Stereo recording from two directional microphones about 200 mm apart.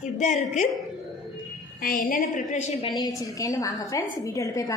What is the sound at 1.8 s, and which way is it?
Speech, 45° left (ahead or behind).